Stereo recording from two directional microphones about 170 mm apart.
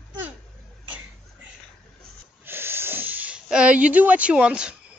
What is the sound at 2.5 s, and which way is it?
Snort, 15° right (ahead or behind).